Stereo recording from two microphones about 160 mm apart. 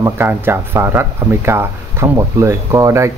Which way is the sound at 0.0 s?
15° right (ahead or behind).